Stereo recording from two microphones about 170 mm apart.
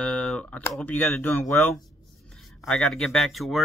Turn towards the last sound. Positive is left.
turn(degrees=0)  # may be behind; listen again after turning